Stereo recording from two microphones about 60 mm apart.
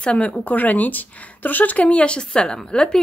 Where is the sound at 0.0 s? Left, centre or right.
Centre.